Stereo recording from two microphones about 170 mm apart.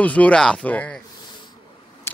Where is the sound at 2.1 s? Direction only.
15° left (ahead or behind).